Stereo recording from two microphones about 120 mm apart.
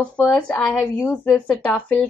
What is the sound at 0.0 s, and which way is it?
Speech, 10° left (ahead or behind).